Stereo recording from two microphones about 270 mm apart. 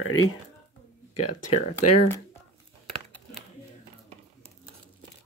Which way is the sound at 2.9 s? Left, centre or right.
Centre.